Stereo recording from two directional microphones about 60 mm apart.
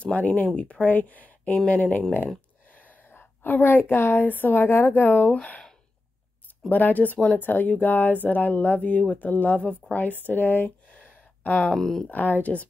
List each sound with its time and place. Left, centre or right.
0.0 s speech: left
3.1 s a woman's voice: left
6.7 s a woman's voice: left
11.1 s a sound: left
11.7 s speech: centre
12.1 s speech: left